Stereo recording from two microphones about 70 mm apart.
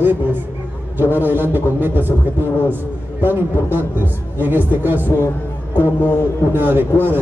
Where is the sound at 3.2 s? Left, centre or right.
Right.